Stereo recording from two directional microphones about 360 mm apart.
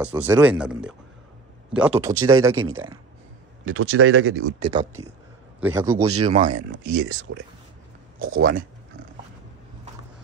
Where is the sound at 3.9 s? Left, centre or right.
Right.